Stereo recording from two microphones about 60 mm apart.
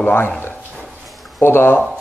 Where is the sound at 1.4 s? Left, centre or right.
Left.